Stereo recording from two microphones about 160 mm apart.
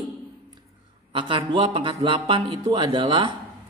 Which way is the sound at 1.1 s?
30° right (ahead or behind).